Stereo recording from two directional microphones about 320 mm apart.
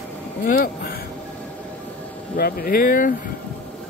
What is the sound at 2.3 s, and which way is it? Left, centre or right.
Speech, left.